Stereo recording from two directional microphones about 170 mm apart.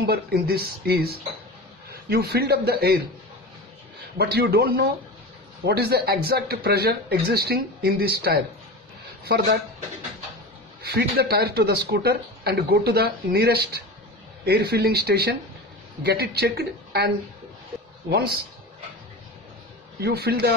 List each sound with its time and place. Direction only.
0.0 s a man's voice: 65° right (ahead or behind)
4.2 s speech: 70° right (ahead or behind)
10.8 s speech: 70° right (ahead or behind)
18.1 s speech: 75° right (ahead or behind)
20.0 s speech: 70° right (ahead or behind)